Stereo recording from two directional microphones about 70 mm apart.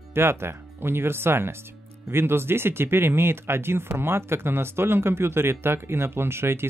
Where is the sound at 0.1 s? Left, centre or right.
Right.